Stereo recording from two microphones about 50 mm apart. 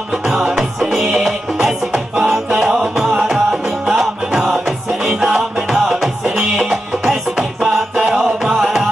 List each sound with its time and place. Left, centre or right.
0.3 s music: centre
5.0 s music: centre